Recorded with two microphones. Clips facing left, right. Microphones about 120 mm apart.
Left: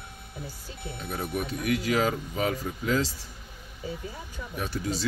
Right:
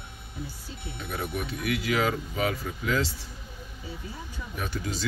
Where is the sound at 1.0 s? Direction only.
35° left (ahead or behind).